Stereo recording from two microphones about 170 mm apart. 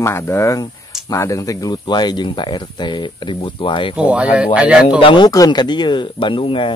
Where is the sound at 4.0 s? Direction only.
5° right (ahead or behind).